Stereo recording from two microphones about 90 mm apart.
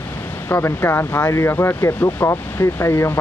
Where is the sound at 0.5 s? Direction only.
25° left (ahead or behind).